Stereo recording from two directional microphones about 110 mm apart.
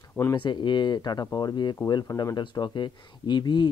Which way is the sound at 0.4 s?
45° left (ahead or behind).